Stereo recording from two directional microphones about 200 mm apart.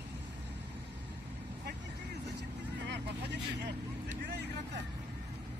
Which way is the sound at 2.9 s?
60° right (ahead or behind).